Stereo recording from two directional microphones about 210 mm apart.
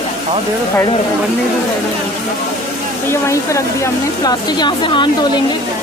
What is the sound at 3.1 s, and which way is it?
Speech, 15° left (ahead or behind).